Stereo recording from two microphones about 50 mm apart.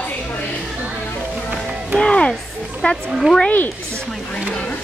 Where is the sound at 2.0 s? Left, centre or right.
Left.